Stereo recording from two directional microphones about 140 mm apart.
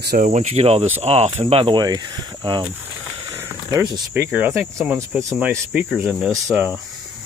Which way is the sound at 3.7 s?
30° right (ahead or behind).